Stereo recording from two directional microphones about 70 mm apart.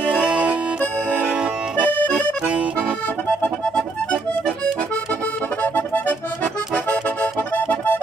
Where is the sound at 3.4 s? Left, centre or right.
Centre.